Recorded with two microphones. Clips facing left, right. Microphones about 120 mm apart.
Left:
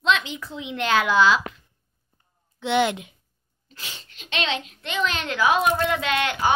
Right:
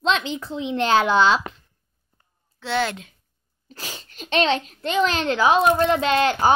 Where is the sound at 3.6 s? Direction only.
40° right (ahead or behind).